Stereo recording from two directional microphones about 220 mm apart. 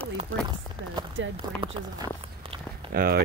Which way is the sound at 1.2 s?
60° right (ahead or behind).